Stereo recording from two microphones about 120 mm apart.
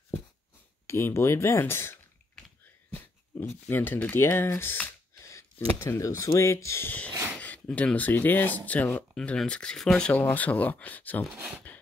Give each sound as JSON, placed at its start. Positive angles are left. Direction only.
{"t": 0.8, "sound": "speech", "side_deg": 20}
{"t": 3.6, "sound": "speech", "side_deg": 15}
{"t": 11.3, "sound": "speech", "side_deg": -10}